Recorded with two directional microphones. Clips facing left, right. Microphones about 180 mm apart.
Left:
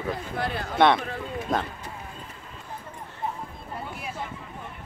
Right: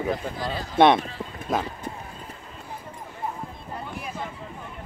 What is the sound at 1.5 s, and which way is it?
Speech, 5° right (ahead or behind).